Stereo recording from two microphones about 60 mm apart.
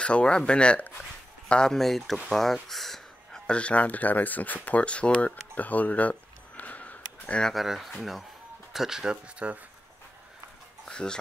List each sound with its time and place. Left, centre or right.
0.0 s speech: centre
3.4 s speech: centre
4.6 s a sound: left
7.5 s speech: centre
10.9 s dog: centre